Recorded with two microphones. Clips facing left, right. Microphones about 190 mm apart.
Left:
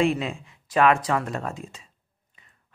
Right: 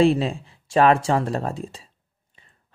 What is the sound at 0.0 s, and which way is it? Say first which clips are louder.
Speech: right 5 dB; 30° right (ahead or behind).